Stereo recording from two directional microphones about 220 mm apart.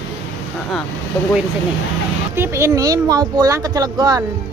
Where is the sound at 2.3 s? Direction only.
10° right (ahead or behind).